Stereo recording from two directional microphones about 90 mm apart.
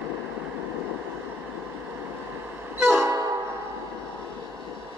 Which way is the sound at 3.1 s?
35° right (ahead or behind).